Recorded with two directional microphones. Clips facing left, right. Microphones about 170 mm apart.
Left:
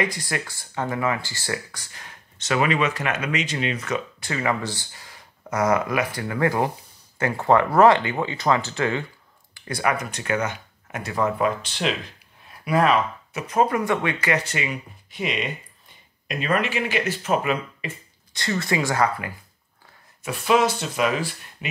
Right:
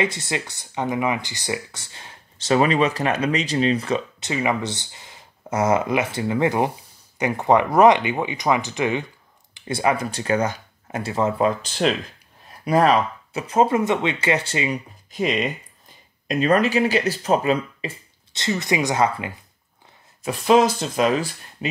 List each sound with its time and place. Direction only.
0.0 s speech: 25° right (ahead or behind)
11.6 s speech: 40° right (ahead or behind); by 19.3 s 20° right (ahead or behind)
20.2 s speech: 35° right (ahead or behind)